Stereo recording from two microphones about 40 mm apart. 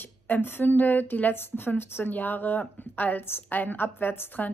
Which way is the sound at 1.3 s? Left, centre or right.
Left.